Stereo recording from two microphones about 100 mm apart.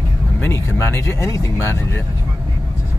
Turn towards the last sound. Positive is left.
turn(degrees=25)  # may be behind; listen again after turning